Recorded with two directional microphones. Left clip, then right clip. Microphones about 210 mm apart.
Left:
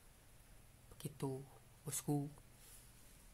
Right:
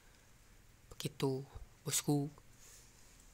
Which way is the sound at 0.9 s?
20° right (ahead or behind).